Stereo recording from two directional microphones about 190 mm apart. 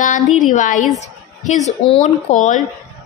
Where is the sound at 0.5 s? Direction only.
40° left (ahead or behind).